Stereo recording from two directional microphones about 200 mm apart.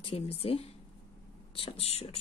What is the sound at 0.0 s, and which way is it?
Speech, 30° left (ahead or behind).